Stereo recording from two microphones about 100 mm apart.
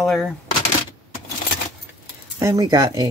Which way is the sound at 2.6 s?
40° right (ahead or behind).